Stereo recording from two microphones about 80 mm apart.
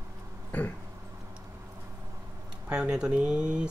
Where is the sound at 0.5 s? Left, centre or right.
Centre.